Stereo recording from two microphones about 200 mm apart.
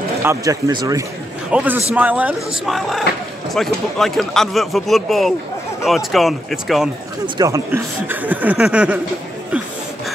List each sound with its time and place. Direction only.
0.2 s speech: 15° right (ahead or behind)
1.5 s speech: 10° right (ahead or behind)
7.3 s speech: 15° right (ahead or behind)